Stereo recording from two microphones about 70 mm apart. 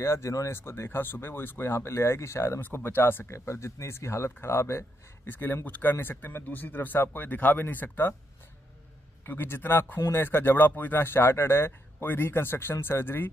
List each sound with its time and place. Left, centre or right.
0.0 s speech: left
0.6 s speech: left
9.2 s speech: left
9.9 s speech: left
10.2 s speech: left